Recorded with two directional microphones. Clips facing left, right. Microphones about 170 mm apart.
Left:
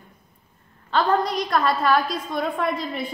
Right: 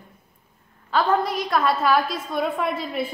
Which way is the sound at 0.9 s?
5° right (ahead or behind).